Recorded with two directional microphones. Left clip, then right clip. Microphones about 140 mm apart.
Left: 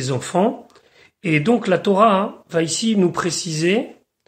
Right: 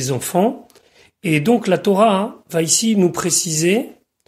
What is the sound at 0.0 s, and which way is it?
Speech, 35° right (ahead or behind).